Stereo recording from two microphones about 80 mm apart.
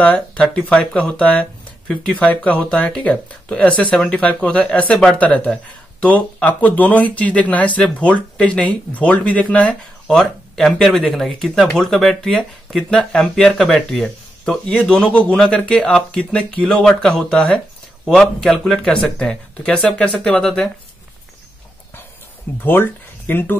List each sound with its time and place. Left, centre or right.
0.0 s speech: centre
10.1 s speech: centre
22.6 s speech: left